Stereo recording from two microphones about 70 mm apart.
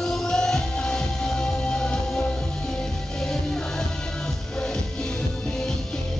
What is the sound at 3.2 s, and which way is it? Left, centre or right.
Music, centre.